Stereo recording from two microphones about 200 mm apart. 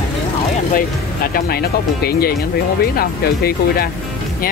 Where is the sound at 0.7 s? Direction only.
50° left (ahead or behind).